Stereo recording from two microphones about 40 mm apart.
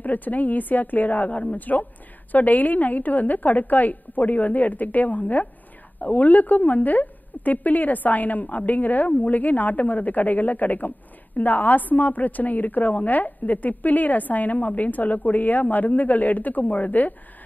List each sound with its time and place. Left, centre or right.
0.0 s a woman's voice: left